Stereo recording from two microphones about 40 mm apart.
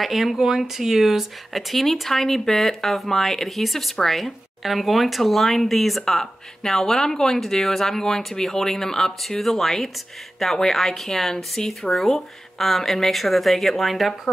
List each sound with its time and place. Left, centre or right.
0.0 s speech: centre
11.6 s speech: centre
11.9 s speech: centre